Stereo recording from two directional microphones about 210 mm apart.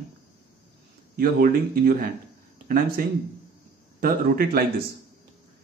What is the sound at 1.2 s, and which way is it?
Speech, 45° right (ahead or behind).